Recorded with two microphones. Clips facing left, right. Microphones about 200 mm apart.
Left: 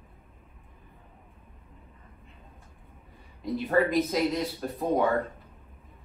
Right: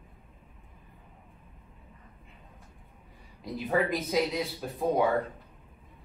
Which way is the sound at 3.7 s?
Centre (ahead or behind).